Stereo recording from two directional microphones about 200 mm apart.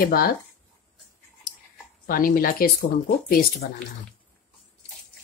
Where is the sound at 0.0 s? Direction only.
50° left (ahead or behind).